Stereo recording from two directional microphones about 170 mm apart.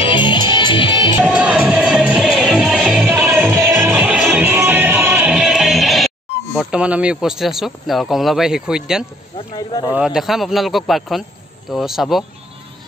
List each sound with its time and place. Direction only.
0.0 s music: 30° left (ahead or behind)
1.1 s music: 5° right (ahead or behind)
9.9 s speech: 5° right (ahead or behind)